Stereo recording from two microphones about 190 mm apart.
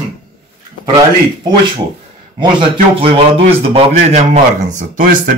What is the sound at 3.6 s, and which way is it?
Speech, 35° right (ahead or behind).